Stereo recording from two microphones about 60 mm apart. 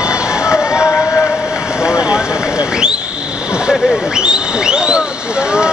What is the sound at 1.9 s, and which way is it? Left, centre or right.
Vehicle, centre.